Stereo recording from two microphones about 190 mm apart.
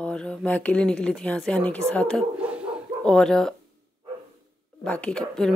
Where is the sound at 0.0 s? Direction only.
5° left (ahead or behind).